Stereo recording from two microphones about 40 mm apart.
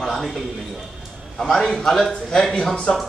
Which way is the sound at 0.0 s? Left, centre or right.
Centre.